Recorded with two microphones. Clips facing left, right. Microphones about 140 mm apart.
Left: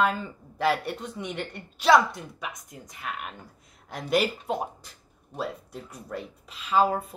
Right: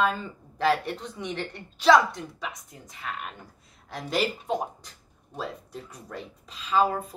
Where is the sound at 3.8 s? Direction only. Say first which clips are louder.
Left 4 dB; 15° left (ahead or behind).